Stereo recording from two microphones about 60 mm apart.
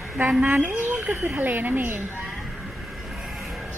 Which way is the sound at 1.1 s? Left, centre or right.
Right.